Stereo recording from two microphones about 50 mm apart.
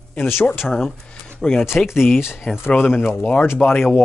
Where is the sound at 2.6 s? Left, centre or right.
Left.